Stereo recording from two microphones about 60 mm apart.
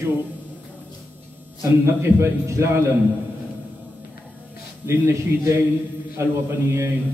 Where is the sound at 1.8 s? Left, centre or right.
Right.